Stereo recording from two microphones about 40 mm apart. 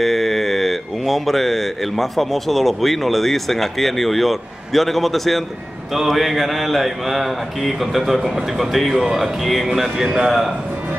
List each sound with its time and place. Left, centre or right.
0.0 s speech: centre
10.0 s a man's voice: centre